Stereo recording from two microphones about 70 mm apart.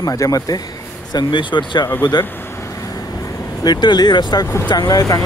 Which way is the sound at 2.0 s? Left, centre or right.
Left.